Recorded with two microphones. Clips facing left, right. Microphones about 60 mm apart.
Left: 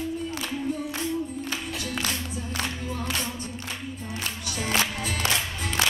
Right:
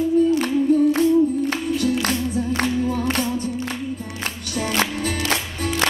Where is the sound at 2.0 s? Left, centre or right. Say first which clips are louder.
Right 9 dB; right.